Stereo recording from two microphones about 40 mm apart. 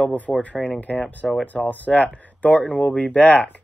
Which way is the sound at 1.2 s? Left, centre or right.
Centre.